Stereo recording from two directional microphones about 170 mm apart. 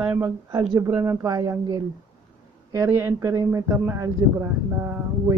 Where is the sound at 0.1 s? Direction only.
20° right (ahead or behind).